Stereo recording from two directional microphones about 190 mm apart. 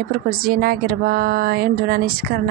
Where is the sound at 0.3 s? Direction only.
50° right (ahead or behind).